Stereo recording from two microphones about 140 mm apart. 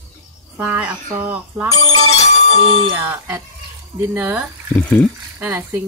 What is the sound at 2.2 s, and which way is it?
Bell, 50° left (ahead or behind).